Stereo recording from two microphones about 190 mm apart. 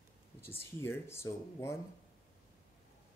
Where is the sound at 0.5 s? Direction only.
10° left (ahead or behind).